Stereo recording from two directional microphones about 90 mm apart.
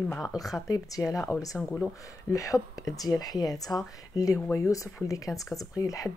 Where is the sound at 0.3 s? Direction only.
45° left (ahead or behind).